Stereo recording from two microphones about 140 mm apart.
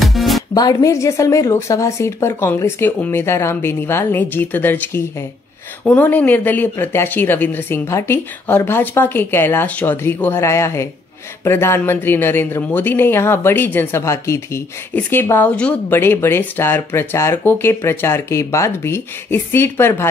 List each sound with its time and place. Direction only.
0.0 s music: centre (ahead or behind)
0.6 s speech: 25° left (ahead or behind)